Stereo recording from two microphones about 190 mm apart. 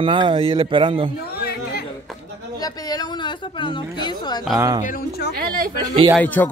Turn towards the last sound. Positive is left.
turn(degrees=10)  # may be behind; listen again after turning